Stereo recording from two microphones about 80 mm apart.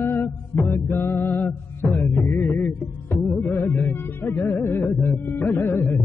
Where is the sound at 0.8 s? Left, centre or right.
Left.